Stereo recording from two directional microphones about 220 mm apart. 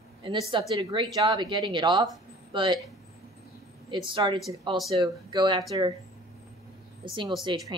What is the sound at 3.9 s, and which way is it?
Speech, 20° right (ahead or behind).